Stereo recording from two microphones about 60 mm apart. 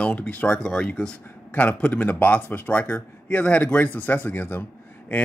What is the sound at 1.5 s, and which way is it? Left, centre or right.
Speech, left.